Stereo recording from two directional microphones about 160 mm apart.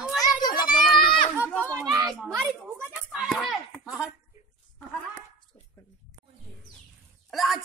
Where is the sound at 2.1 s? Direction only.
15° right (ahead or behind).